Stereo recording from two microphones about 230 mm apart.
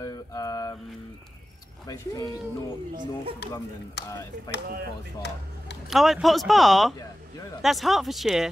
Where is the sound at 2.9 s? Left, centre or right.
Right.